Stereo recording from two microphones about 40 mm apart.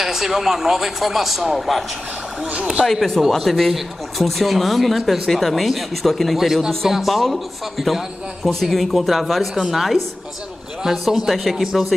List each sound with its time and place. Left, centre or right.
0.0 s speech: centre
2.5 s speech: right
2.8 s speech: centre